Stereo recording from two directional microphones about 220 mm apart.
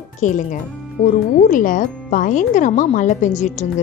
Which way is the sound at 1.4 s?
35° left (ahead or behind).